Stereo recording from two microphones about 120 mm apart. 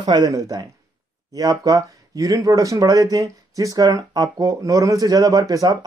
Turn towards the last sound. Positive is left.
turn(degrees=-30)  # may be behind; listen again after turning